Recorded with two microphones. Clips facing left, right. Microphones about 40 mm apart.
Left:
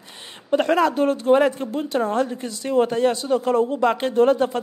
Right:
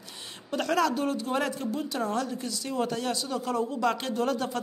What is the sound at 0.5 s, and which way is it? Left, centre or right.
Speech, left.